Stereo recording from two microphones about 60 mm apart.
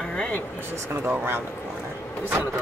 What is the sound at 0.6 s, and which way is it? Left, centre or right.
Speech, right.